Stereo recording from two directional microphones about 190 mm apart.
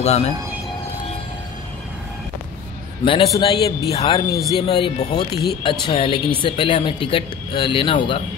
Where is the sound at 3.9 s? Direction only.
30° left (ahead or behind).